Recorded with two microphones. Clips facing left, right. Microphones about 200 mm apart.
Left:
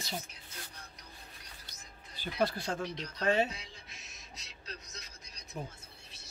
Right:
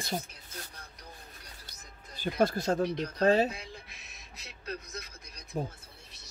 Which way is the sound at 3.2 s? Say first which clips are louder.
Right 5 dB; 35° right (ahead or behind).